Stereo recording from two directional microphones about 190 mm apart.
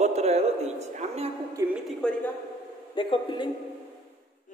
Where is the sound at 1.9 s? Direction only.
5° left (ahead or behind).